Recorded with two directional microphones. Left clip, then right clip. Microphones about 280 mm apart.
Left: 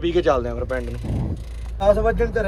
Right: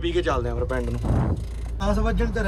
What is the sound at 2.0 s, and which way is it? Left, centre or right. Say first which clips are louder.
Speech: left 7 dB; centre.